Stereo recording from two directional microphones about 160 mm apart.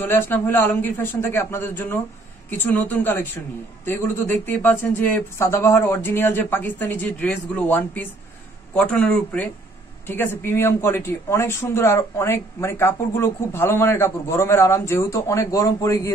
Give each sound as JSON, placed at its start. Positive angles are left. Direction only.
{"t": 0.0, "sound": "speech", "side_deg": 15}